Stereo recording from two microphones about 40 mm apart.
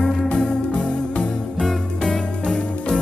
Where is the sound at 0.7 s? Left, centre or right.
Left.